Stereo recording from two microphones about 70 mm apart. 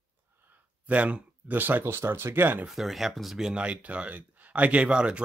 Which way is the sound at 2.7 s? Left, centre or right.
Centre.